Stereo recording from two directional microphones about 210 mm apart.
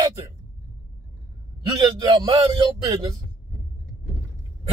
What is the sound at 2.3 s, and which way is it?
Speech, 20° right (ahead or behind).